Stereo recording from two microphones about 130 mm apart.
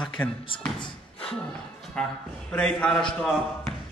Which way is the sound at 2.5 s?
10° left (ahead or behind).